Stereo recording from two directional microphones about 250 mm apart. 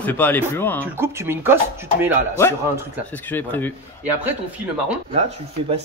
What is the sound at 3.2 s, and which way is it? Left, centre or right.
Speech, centre.